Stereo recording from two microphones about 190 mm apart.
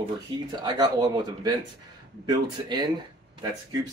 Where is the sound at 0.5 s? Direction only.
20° right (ahead or behind).